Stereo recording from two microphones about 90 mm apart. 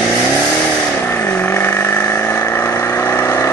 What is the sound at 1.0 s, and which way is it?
Vehicle, 25° left (ahead or behind).